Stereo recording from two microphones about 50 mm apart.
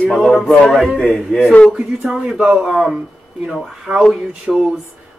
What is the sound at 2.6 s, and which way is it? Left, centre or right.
Speech, centre.